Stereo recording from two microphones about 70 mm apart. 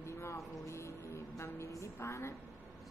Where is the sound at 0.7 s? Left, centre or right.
Left.